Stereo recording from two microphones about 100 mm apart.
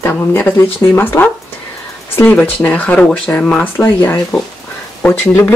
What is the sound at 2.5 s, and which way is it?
Speech, 15° left (ahead or behind).